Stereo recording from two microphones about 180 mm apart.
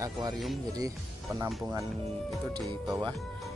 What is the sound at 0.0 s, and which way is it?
Speech, 20° right (ahead or behind).